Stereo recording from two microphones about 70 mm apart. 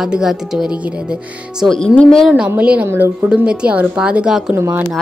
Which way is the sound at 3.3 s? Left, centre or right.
Centre.